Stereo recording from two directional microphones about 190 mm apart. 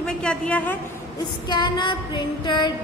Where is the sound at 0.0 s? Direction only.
5° left (ahead or behind).